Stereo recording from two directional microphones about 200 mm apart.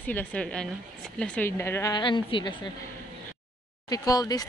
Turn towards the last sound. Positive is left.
turn(degrees=20)  # may be behind; listen again after turning